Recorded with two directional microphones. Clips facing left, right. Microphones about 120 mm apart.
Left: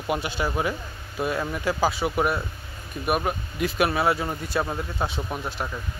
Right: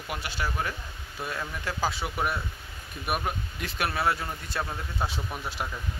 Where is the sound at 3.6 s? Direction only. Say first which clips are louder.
Left 7 dB; 10° left (ahead or behind).